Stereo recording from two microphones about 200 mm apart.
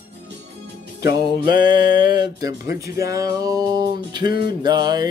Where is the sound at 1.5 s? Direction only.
25° right (ahead or behind).